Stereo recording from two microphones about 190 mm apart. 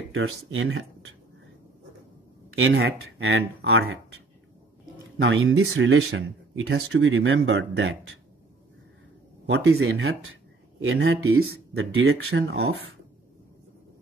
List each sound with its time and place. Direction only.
0.1 s speech: 90° right
2.6 s speech: 80° right
5.2 s speech: 80° right
9.5 s speech: 90° right